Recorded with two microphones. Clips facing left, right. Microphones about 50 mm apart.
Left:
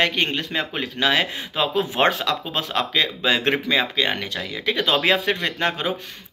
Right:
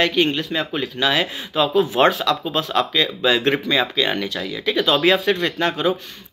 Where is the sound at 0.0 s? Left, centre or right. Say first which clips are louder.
Right 3 dB; left.